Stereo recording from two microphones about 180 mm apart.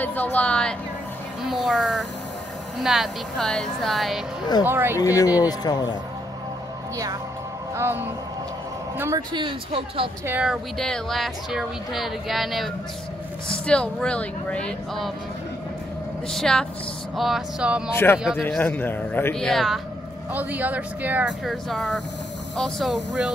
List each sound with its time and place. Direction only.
0.0 s a man's voice: 10° left (ahead or behind)
4.6 s speech: 10° right (ahead or behind)
4.9 s a man's voice: 20° left (ahead or behind)
7.7 s speech: 10° right (ahead or behind)
9.3 s speech: 25° right (ahead or behind)
10.2 s speech: 5° right (ahead or behind)
16.3 s speech: 5° left (ahead or behind)
17.9 s a man's voice: 10° left (ahead or behind)